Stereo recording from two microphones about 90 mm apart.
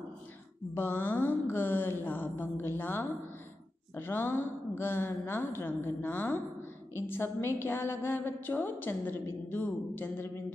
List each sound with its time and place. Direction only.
0.7 s a woman's voice: 25° left (ahead or behind)